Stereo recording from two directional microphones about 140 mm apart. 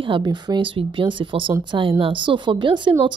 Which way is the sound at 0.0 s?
35° right (ahead or behind).